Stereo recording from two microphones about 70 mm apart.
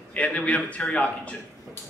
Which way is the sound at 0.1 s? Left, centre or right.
Centre.